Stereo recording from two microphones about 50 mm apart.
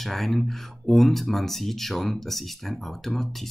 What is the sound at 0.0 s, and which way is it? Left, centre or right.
Speech, centre.